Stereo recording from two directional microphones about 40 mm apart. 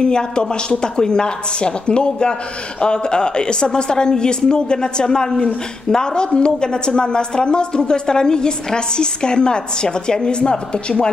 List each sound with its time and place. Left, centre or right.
0.0 s a woman's voice: left